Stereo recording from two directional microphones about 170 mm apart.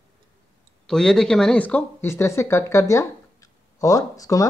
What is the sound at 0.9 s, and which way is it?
Speech, 5° left (ahead or behind).